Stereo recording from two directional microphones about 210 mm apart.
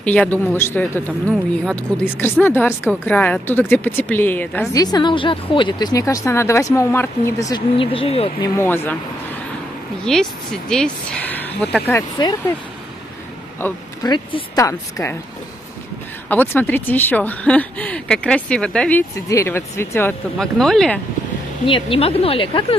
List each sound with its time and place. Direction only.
0.0 s speech: 5° left (ahead or behind); by 8.5 s 25° left (ahead or behind)
8.5 s speech: 10° left (ahead or behind)
10.0 s speech: 5° left (ahead or behind)
13.6 s speech: 10° left (ahead or behind)
16.3 s speech: 10° left (ahead or behind)
21.6 s a woman's voice: 25° left (ahead or behind)